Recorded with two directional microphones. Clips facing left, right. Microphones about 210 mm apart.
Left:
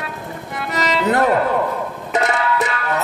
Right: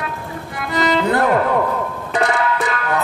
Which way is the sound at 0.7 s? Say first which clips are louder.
Right 2 dB; 20° left (ahead or behind).